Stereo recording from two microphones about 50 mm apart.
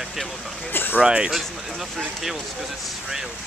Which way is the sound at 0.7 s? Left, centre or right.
Left.